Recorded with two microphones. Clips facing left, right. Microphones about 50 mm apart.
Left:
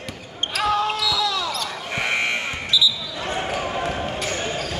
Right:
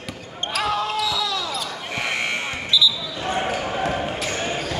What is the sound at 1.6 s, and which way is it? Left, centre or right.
Basketball bounce, centre.